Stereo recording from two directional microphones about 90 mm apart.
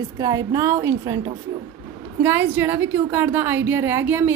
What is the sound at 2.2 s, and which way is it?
A woman's voice, 20° right (ahead or behind).